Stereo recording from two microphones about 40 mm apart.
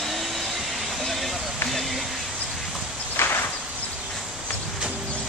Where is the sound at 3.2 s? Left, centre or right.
Left.